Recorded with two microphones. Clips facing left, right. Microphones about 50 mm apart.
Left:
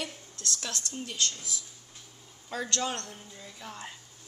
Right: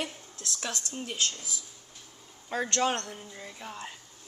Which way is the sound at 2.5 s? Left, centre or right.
Right.